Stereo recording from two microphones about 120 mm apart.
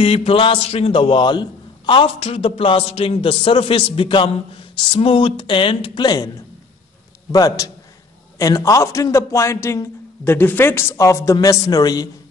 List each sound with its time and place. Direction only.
0.0 s a man's voice: 55° left (ahead or behind)
6.0 s a man's voice: 30° left (ahead or behind)
7.3 s a man's voice: 30° left (ahead or behind)